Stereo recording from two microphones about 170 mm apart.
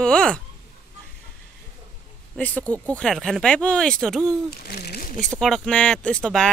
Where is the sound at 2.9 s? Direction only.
5° left (ahead or behind).